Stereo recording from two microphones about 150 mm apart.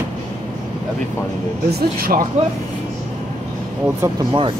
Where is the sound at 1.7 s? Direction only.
85° right.